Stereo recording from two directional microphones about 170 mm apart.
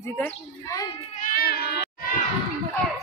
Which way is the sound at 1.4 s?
65° left (ahead or behind).